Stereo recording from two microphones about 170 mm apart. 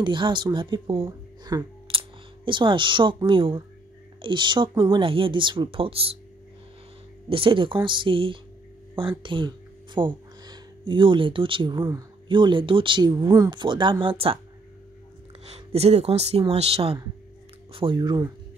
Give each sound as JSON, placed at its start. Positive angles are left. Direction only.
{"t": 0.0, "sound": "speech", "side_deg": -30}
{"t": 7.2, "sound": "speech", "side_deg": -30}
{"t": 15.5, "sound": "speech", "side_deg": -35}